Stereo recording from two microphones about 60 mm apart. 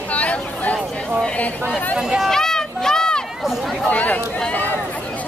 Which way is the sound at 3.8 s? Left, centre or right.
Left.